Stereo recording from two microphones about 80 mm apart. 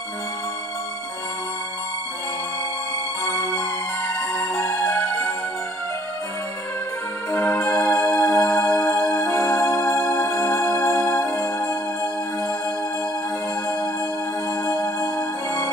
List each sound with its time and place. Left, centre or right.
4.4 s music: centre
7.3 s music: centre
14.7 s music: left